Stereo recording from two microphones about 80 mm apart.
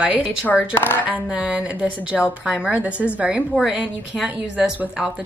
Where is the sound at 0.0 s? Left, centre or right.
Centre.